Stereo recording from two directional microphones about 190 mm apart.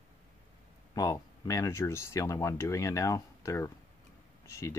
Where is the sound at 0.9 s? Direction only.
15° left (ahead or behind).